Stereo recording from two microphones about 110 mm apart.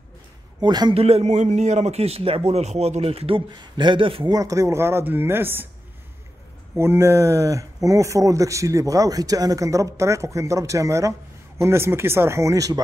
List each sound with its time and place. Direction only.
0.6 s a man's voice: 40° right (ahead or behind)
0.9 s a man's voice: 70° right (ahead or behind); by 4.3 s 50° right (ahead or behind)
4.3 s speech: 30° right (ahead or behind)
6.8 s speech: 25° right (ahead or behind)